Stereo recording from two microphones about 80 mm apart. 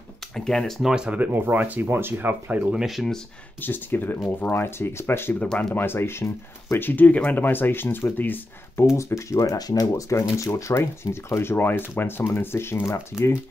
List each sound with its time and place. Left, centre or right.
0.5 s speech: centre
0.9 s speech: centre
2.7 s speech: centre
3.6 s speech: left
5.4 s speech: centre
5.8 s speech: left
8.9 s speech: left